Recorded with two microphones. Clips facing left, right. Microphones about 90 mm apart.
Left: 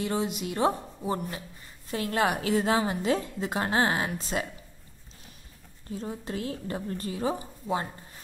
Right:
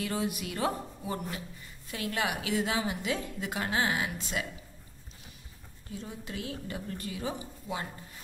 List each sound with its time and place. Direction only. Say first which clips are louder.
0.0 s a woman's voice: left 3 dB; 25° left (ahead or behind)
5.9 s a woman's voice: left 6 dB; 35° left (ahead or behind)